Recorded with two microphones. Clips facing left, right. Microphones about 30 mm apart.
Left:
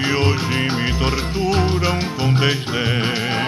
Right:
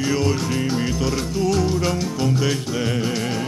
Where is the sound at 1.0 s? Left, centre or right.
Left.